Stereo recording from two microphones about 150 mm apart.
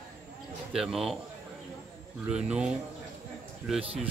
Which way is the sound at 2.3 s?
5° right (ahead or behind).